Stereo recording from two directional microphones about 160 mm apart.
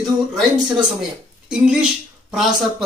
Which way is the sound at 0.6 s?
5° right (ahead or behind).